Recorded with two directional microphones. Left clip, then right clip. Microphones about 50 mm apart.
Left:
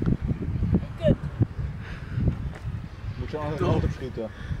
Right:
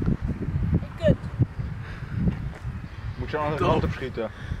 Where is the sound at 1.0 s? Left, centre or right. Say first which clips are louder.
Right 1 dB; centre.